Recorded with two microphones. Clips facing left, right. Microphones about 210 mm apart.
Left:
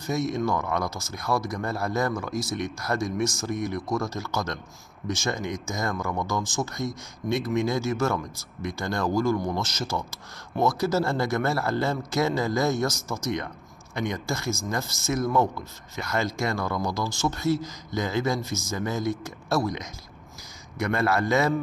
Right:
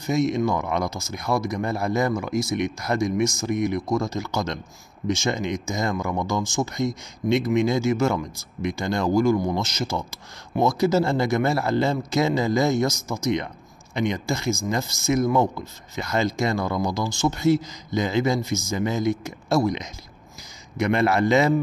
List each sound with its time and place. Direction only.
0.0 s speech: 20° right (ahead or behind)